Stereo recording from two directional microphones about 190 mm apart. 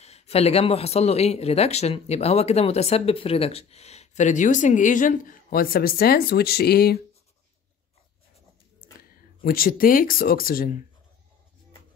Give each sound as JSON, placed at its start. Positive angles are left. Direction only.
{"t": 0.0, "sound": "speech", "side_deg": 35}
{"t": 9.1, "sound": "speech", "side_deg": 50}